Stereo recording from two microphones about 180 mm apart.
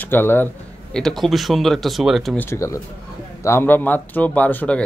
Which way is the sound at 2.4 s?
15° left (ahead or behind).